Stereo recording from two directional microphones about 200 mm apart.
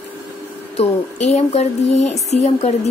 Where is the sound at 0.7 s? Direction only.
35° left (ahead or behind).